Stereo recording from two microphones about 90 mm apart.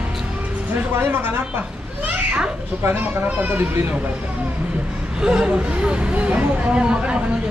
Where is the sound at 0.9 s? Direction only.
25° right (ahead or behind).